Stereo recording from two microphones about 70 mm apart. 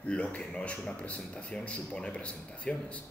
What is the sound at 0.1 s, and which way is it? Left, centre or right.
Speech, centre.